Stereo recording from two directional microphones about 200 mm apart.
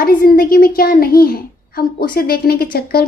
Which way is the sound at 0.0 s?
45° left (ahead or behind).